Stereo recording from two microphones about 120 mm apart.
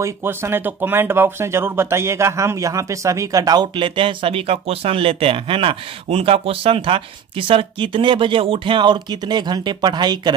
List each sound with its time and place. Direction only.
0.0 s speech: 20° right (ahead or behind)
3.7 s speech: 45° right (ahead or behind)